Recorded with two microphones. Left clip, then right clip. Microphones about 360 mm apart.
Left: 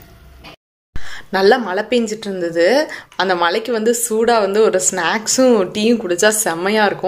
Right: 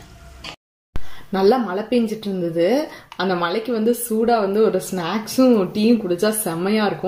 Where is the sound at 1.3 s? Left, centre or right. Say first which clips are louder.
Left 4 dB; left.